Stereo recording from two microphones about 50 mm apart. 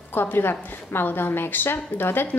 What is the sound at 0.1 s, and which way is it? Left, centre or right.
A woman's voice, left.